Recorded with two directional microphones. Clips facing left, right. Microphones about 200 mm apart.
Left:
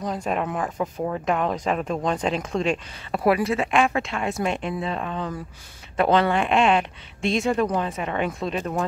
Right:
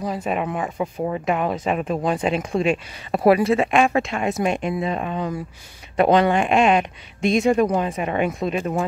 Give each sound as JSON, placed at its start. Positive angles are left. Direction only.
{"t": 0.0, "sound": "speech", "side_deg": -5}
{"t": 3.1, "sound": "speech", "side_deg": -25}